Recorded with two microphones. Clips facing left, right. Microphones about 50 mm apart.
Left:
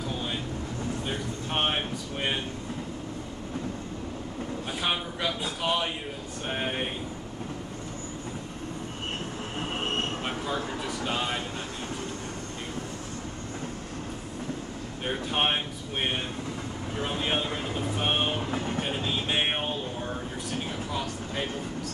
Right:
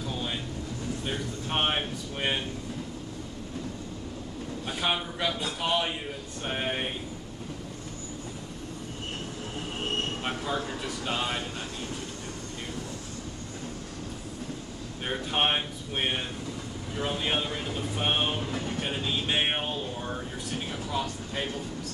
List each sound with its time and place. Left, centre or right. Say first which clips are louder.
1.0 s air conditioning: even; centre
4.6 s speech: right 2 dB; centre
5.6 s a sound: even; centre
6.4 s speech: even; centre
9.6 s train wheels squealing: left 2 dB; left
10.2 s a sound: even; centre
11.1 s speech: right 1 dB; centre
15.0 s speech: even; centre
17.4 s speech: left 1 dB; left
18.0 s speech: even; centre
18.5 s vehicle: left 2 dB; left
19.2 s a sound: even; centre